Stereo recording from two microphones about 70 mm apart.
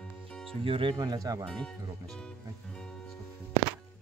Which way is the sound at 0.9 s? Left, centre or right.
Right.